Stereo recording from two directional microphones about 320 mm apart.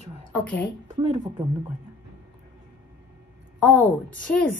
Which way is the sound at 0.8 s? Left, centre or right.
Centre.